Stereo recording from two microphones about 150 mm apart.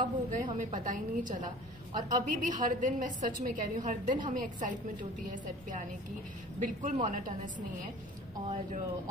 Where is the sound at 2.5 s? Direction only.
60° right (ahead or behind).